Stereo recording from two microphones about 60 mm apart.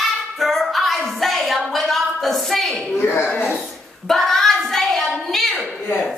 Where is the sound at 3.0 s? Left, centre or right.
Left.